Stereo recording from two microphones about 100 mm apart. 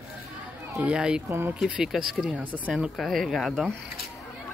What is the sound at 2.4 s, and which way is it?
Speech, 15° right (ahead or behind).